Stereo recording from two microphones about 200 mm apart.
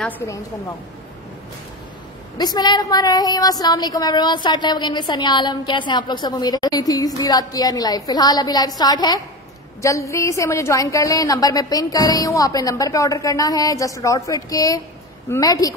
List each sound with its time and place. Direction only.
0.2 s a woman's voice: 15° left (ahead or behind)
2.3 s a woman's voice: 20° left (ahead or behind)